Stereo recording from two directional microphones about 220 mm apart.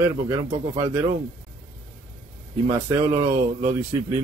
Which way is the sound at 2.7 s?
10° right (ahead or behind).